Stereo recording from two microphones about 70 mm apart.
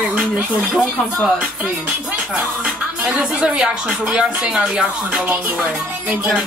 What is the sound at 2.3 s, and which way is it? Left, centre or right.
Speech, centre.